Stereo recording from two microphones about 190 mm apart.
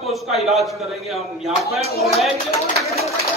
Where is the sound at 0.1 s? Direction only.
Centre (ahead or behind).